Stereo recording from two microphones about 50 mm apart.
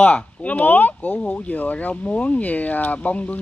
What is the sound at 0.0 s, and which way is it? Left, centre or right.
A woman's voice, left.